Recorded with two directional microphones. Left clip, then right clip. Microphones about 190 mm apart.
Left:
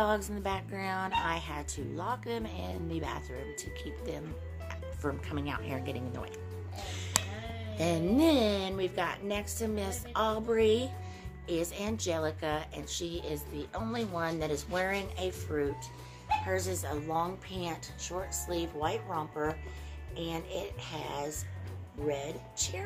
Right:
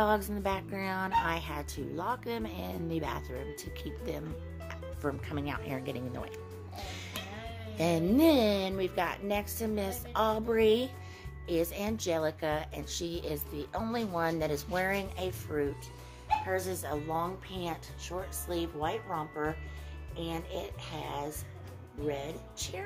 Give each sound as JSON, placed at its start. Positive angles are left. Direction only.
{"t": 0.3, "sound": "a woman's voice", "side_deg": -20}